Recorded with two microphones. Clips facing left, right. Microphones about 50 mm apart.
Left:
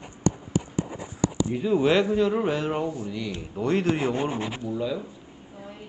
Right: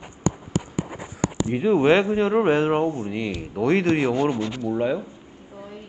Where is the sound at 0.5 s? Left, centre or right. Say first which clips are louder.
Even; right.